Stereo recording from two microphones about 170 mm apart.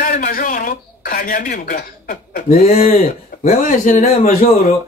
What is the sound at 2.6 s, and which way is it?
Speech, 35° left (ahead or behind).